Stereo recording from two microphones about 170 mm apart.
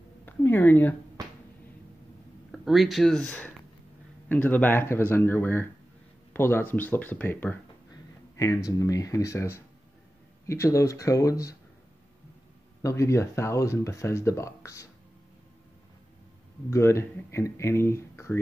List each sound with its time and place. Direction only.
0.2 s speech: 10° left (ahead or behind)
2.5 s speech: centre (ahead or behind)
7.9 s a sound: 20° left (ahead or behind)
8.6 s speech: 20° left (ahead or behind)
12.8 s speech: 15° left (ahead or behind)
16.7 s speech: 15° left (ahead or behind)